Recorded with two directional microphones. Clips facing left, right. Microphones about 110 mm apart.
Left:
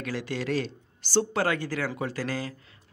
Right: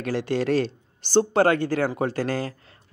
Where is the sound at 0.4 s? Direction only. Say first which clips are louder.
Right 6 dB; 55° right (ahead or behind).